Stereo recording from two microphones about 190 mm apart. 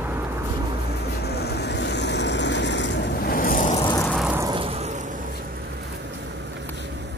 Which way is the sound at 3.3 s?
45° left (ahead or behind).